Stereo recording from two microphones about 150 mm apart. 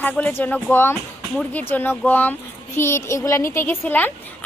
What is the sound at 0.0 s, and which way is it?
A woman's voice, 10° left (ahead or behind).